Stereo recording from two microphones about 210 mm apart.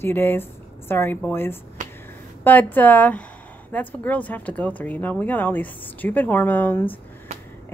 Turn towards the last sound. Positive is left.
turn(degrees=10)  # may be behind; listen again after turning